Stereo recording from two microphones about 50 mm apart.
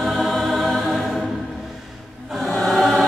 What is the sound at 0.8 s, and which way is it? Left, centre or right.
Choir, centre.